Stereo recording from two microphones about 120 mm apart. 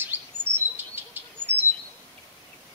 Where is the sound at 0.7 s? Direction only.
15° right (ahead or behind).